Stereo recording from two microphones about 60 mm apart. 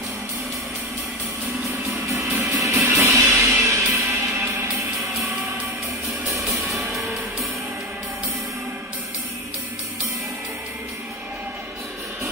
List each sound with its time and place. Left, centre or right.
2.0 s music: right
4.9 s music: centre
6.2 s music: right